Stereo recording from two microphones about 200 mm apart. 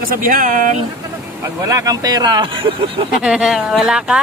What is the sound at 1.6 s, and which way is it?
Speech, 15° right (ahead or behind).